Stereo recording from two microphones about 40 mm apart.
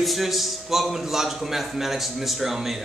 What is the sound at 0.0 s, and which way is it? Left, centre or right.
A man's voice, centre.